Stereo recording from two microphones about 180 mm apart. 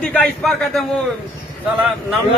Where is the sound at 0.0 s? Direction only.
5° left (ahead or behind).